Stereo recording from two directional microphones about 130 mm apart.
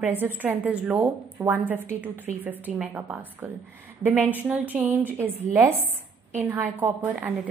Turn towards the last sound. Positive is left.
turn(degrees=-15)  # may be behind; listen again after turning